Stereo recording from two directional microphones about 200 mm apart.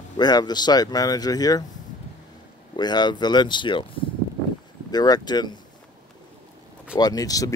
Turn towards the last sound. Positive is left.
turn(degrees=20)  # may be behind; listen again after turning